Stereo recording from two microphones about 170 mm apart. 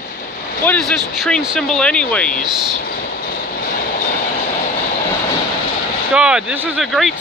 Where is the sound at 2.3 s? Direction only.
55° left (ahead or behind).